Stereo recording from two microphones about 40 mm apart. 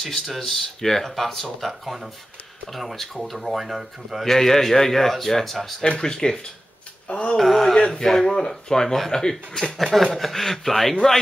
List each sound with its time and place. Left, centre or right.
0.0 s speech: centre
4.2 s a man's voice: centre
5.8 s a man's voice: centre
7.1 s a sound: left
7.3 s a man's voice: centre